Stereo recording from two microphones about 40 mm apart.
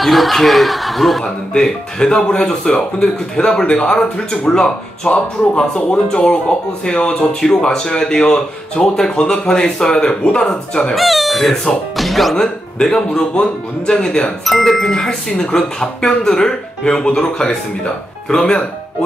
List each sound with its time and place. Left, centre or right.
0.0 s speech: centre
1.6 s a man's voice: left
11.0 s speech: centre
12.4 s a man's voice: centre
14.2 s a man's voice: centre
15.0 s speech: centre